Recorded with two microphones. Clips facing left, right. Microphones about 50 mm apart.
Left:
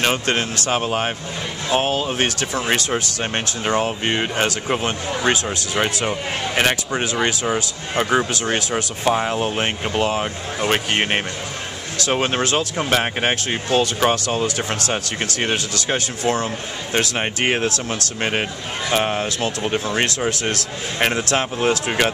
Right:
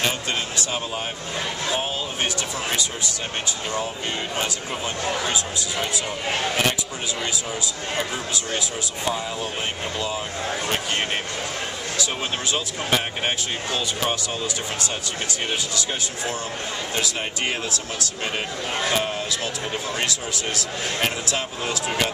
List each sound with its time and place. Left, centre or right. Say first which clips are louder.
0.0 s speech: left 5 dB; left
6.0 s speech: left 2 dB; left
6.9 s speech: left 7 dB; left
8.1 s speech: left 8 dB; left
9.0 s speech: left 7 dB; left
10.6 s speech: left 9 dB; left
12.1 s speech: left 11 dB; left
18.9 s speech: left 5 dB; left
20.0 s speech: left 6 dB; left
21.5 s speech: left 5 dB; left